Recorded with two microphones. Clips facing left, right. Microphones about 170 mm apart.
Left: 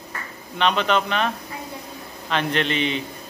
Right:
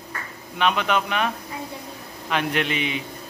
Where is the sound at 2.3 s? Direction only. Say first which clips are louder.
Left 1 dB; 10° right (ahead or behind).